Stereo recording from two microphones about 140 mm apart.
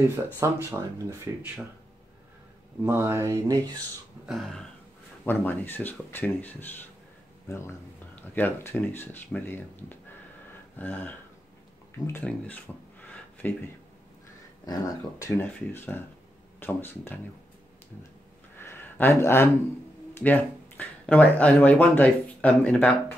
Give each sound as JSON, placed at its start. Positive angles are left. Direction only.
{"t": 0.1, "sound": "speech", "side_deg": -20}
{"t": 2.8, "sound": "speech", "side_deg": -15}
{"t": 4.3, "sound": "a sound", "side_deg": 0}
{"t": 5.2, "sound": "speech", "side_deg": 15}
{"t": 15.2, "sound": "speech", "side_deg": 15}
{"t": 18.6, "sound": "a sound", "side_deg": 15}
{"t": 20.2, "sound": "speech", "side_deg": 15}